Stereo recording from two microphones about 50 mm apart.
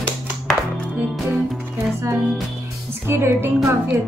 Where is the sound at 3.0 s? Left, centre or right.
Right.